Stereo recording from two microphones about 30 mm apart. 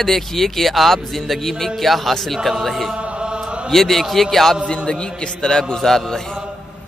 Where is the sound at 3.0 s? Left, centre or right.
Right.